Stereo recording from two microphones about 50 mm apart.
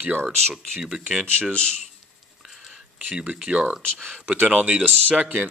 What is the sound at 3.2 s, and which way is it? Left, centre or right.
Speech, right.